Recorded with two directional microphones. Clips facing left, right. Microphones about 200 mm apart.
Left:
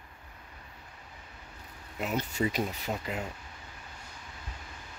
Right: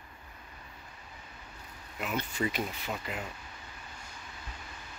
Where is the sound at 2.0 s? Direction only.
40° left (ahead or behind).